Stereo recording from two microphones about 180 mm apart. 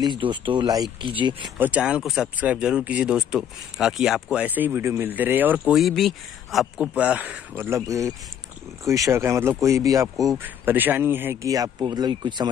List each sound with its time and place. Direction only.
0.0 s speech: 25° right (ahead or behind)
1.6 s speech: 5° right (ahead or behind); by 12.4 s 25° right (ahead or behind)